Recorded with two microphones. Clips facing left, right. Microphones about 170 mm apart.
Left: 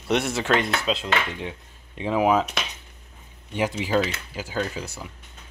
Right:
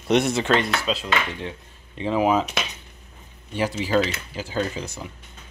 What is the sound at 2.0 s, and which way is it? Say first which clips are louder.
Speech: even; 10° left (ahead or behind).